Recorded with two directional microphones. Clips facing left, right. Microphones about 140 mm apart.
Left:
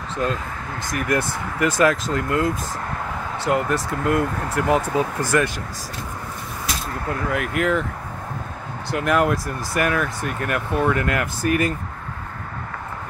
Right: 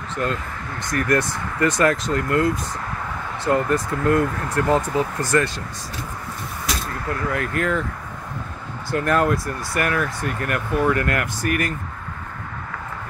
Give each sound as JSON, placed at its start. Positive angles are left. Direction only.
{"t": 0.2, "sound": "speech", "side_deg": 20}
{"t": 7.1, "sound": "speech", "side_deg": 15}
{"t": 8.9, "sound": "speech", "side_deg": 15}